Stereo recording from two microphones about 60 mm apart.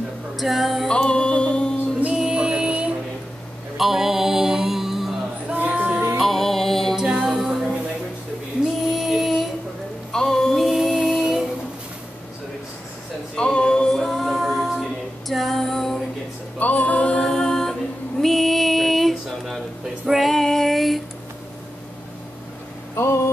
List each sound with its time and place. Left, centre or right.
0.4 s music: centre
0.8 s music: centre
2.1 s music: centre
3.7 s music: centre
5.5 s music: right
6.1 s music: centre
7.0 s music: centre
8.9 s music: centre
10.1 s music: centre
13.4 s a capella: centre
16.5 s music: left; by 17.7 s centre
18.2 s female singing: centre
22.9 s a sound: left